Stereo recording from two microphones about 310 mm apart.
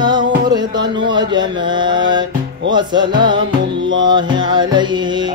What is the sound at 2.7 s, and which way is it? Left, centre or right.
Music, centre.